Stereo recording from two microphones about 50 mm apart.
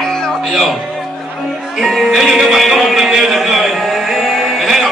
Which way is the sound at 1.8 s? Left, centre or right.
Centre.